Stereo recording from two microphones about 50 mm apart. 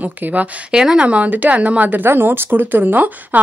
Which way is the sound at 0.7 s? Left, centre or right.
Centre.